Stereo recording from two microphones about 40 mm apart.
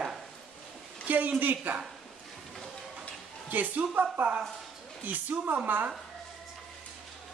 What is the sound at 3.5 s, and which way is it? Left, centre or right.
Speech, right.